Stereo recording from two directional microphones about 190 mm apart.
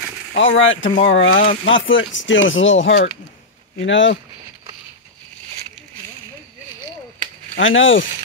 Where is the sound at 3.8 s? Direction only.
75° left (ahead or behind).